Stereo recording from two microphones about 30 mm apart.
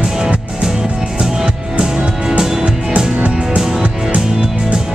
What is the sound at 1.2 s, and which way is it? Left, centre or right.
Music, right.